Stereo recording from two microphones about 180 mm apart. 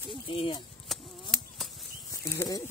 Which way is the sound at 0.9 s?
Centre (ahead or behind).